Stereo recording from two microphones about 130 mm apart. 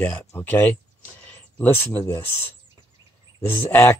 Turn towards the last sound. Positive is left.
turn(degrees=15)  # may be behind; listen again after turning